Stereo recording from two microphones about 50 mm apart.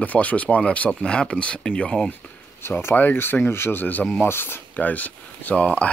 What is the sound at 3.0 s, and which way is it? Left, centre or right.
Speech, left.